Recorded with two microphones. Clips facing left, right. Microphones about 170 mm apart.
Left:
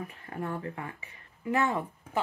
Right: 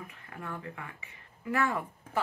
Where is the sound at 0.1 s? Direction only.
35° left (ahead or behind).